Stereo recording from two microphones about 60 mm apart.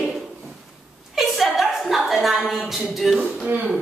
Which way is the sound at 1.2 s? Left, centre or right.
Centre.